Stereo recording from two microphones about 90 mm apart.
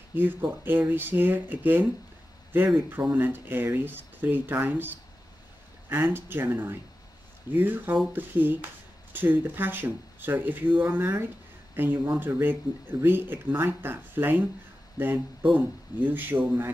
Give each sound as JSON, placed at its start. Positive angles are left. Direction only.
{"t": 0.1, "sound": "speech", "side_deg": -20}
{"t": 2.9, "sound": "speech", "side_deg": -25}